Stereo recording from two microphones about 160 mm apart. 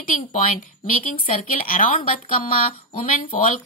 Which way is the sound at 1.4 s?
60° left (ahead or behind).